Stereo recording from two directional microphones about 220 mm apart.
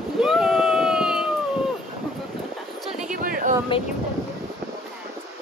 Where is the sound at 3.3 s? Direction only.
40° right (ahead or behind).